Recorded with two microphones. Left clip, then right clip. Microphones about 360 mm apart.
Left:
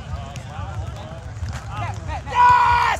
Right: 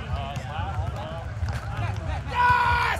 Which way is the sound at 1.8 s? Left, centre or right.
Centre.